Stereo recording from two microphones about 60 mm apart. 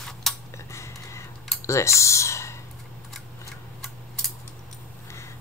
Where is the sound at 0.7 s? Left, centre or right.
Left.